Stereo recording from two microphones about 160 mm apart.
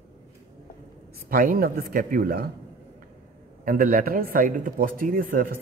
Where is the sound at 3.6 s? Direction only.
65° right (ahead or behind).